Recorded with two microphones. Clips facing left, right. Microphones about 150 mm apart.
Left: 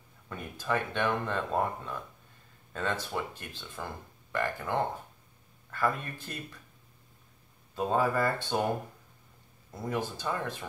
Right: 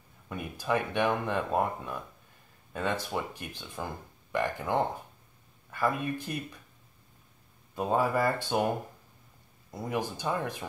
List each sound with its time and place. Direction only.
0.3 s speech: 15° right (ahead or behind)
7.7 s speech: 10° right (ahead or behind)
9.7 s speech: 15° right (ahead or behind)